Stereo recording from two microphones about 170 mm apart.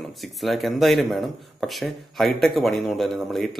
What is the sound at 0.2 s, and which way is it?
Speech, centre (ahead or behind).